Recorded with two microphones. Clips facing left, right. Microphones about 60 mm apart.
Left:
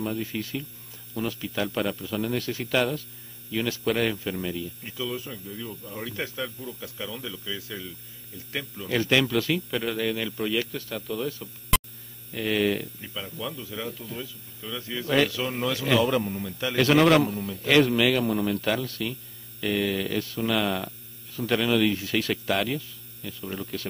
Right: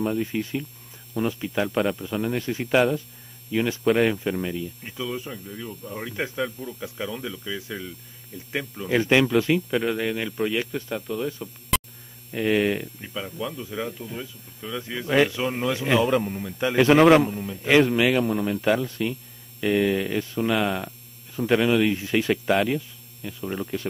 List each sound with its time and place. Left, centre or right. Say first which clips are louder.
0.0 s speech: right 5 dB; centre
18.0 s speech: right 2 dB; centre
21.9 s speech: right 3 dB; right
22.3 s speech: right 6 dB; centre